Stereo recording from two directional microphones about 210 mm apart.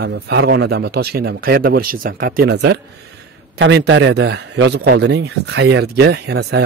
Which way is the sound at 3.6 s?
60° right (ahead or behind).